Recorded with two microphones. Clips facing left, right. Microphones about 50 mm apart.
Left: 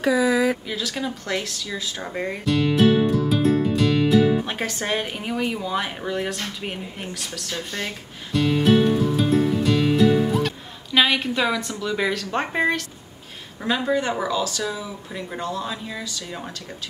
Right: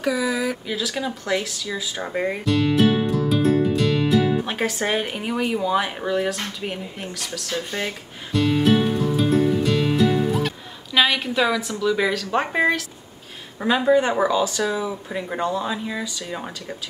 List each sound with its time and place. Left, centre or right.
0.0 s speech: left
0.7 s speech: centre
2.4 s music: centre
7.5 s music: centre
11.8 s speech: centre
13.6 s speech: centre